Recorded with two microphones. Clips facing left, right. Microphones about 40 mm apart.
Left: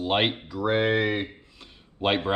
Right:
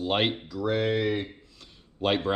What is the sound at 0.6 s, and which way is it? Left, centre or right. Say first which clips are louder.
Speech: left 3 dB; left.